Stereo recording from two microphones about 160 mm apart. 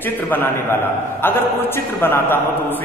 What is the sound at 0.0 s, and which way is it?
A man's voice, 10° left (ahead or behind).